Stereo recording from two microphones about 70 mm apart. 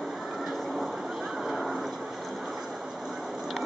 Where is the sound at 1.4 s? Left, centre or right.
Centre.